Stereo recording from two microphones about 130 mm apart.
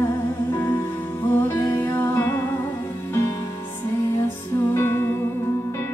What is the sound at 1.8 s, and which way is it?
Music, 20° left (ahead or behind).